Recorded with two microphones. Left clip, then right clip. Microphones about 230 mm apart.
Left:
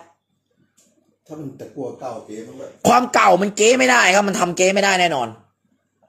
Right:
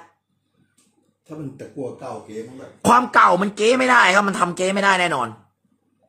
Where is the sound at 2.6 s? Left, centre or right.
Centre.